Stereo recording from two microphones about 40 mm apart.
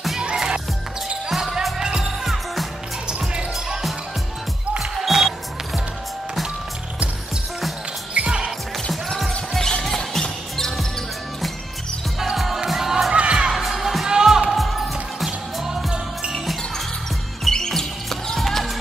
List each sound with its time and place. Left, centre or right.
0.2 s music: centre
1.3 s music: centre
2.2 s music: centre
3.1 s music: right
5.0 s music: centre
8.1 s basketball bounce: right
9.6 s music: centre
12.2 s music: centre
13.1 s music: right
13.5 s music: centre
14.0 s music: centre
14.5 s basketball bounce: centre
15.2 s music: centre
17.5 s music: centre